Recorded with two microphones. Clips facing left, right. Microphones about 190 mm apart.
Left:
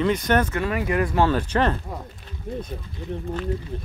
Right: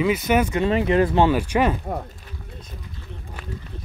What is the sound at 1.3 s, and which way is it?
Speech, 10° right (ahead or behind).